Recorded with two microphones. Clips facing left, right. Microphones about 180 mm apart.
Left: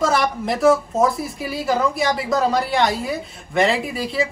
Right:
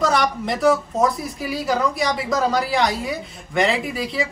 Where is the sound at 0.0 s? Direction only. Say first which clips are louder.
Even; centre (ahead or behind).